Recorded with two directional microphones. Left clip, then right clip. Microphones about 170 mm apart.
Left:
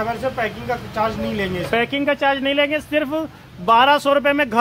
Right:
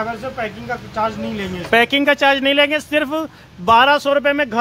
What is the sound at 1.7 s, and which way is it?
Speech, 35° right (ahead or behind).